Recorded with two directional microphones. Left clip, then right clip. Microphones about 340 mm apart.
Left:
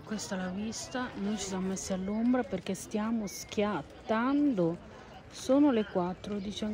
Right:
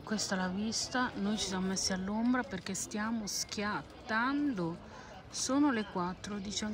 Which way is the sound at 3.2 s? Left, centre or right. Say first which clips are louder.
Right 2 dB; centre.